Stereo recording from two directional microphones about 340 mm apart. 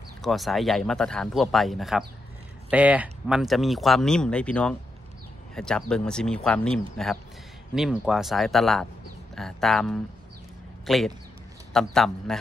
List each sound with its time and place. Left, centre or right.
0.2 s speech: centre